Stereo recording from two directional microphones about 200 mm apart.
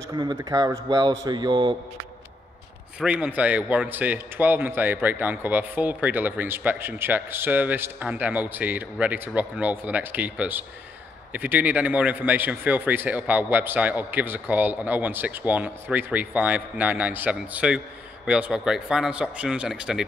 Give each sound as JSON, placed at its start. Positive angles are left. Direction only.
{"t": 0.1, "sound": "speech", "side_deg": -20}
{"t": 3.0, "sound": "a man's voice", "side_deg": -5}